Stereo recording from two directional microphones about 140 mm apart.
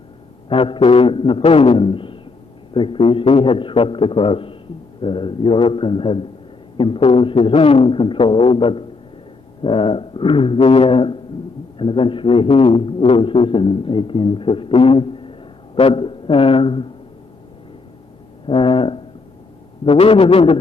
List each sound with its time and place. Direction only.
0.5 s speech: 40° left (ahead or behind)
18.5 s speech: 40° left (ahead or behind)